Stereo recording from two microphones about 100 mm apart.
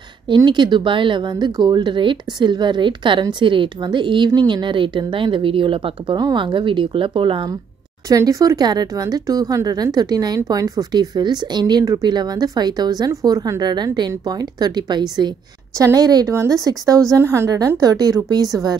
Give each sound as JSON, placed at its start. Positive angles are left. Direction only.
{"t": 0.5, "sound": "speech", "side_deg": -50}
{"t": 8.1, "sound": "a woman's voice", "side_deg": -35}